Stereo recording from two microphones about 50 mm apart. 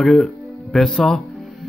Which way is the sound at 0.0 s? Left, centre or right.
Centre.